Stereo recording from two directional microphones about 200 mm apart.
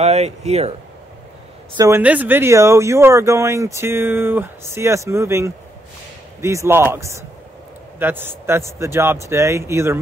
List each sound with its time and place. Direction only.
0.0 s speech: 35° right (ahead or behind)
1.8 s speech: 10° right (ahead or behind)